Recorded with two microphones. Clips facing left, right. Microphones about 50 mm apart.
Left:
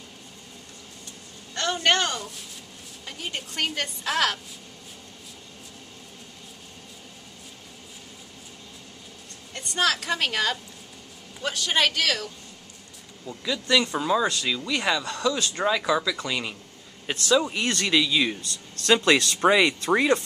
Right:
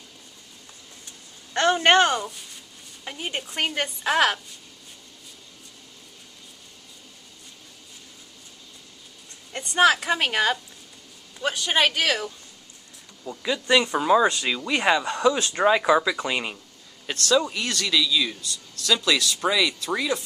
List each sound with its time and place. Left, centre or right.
1.7 s a woman's voice: right
9.5 s a woman's voice: centre
17.0 s speech: centre
17.6 s speech: left